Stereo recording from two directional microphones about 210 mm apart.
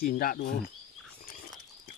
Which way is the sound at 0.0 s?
45° left (ahead or behind).